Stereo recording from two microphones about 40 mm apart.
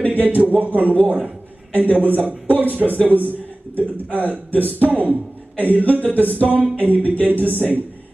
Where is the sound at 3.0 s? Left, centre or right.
Right.